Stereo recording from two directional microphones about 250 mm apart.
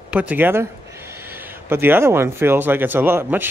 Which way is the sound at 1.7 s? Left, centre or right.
Centre.